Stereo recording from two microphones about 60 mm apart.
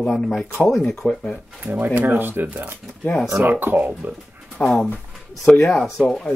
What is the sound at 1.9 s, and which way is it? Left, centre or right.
Speech, right.